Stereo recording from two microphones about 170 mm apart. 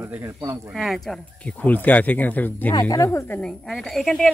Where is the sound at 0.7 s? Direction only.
Centre (ahead or behind).